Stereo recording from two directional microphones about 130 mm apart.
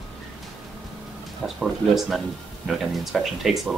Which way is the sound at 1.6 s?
Centre (ahead or behind).